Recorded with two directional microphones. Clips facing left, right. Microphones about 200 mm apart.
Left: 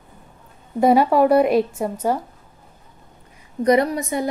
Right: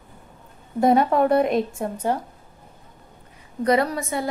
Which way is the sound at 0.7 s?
5° left (ahead or behind).